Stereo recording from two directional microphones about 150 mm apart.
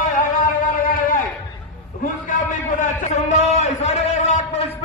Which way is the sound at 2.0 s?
60° left (ahead or behind).